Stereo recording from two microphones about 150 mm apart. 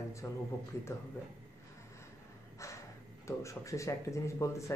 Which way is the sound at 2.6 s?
20° left (ahead or behind).